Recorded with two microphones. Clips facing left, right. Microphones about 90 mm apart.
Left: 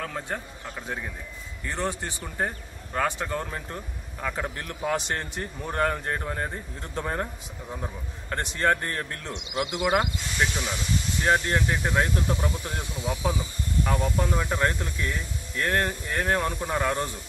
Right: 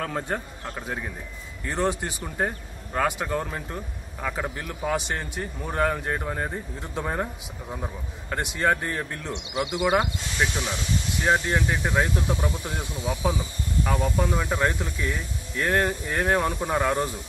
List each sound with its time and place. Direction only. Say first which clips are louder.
0.0 s speech: right 4 dB; 10° right (ahead or behind)
2.2 s speech: right 2 dB; 5° right (ahead or behind)